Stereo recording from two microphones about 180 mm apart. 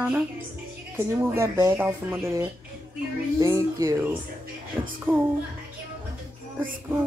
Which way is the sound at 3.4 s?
15° right (ahead or behind).